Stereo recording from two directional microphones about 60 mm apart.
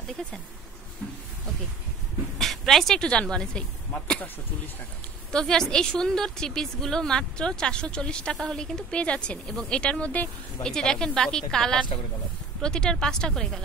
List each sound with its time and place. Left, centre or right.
2.3 s speech: centre
5.3 s a woman's voice: centre
10.6 s a woman's voice: centre